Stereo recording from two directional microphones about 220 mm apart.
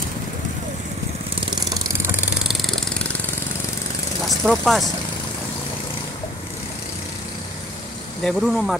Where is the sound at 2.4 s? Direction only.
Centre (ahead or behind).